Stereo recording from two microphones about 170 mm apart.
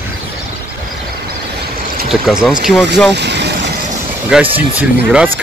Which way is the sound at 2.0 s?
Centre (ahead or behind).